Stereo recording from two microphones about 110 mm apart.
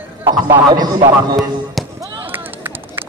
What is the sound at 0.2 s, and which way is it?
Speech, 30° right (ahead or behind).